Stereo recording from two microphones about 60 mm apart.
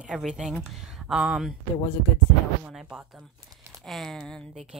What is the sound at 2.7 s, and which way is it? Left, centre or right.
Speech, centre.